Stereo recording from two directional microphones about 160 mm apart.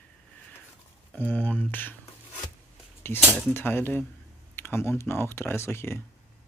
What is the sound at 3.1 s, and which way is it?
Speech, 5° right (ahead or behind).